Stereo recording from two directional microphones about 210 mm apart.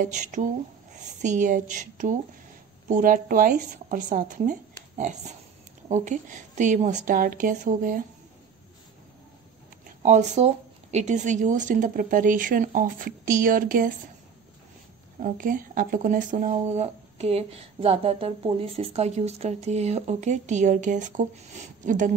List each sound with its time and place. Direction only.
0.0 s speech: 35° right (ahead or behind)
9.8 s speech: 35° right (ahead or behind)
15.2 s speech: 40° right (ahead or behind)